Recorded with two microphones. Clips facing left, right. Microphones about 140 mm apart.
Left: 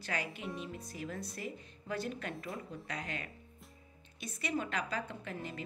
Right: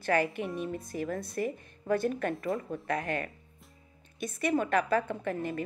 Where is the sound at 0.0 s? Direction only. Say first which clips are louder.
Right 11 dB; 55° right (ahead or behind).